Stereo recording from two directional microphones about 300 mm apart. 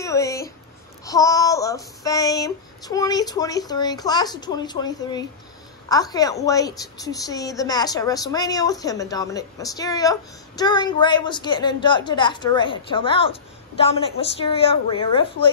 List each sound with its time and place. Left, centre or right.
0.0 s a woman's voice: centre